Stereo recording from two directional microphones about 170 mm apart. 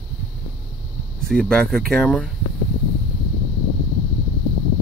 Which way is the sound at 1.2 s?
5° left (ahead or behind).